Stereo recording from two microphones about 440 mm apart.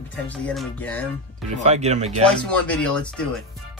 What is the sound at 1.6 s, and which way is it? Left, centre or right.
Speech, centre.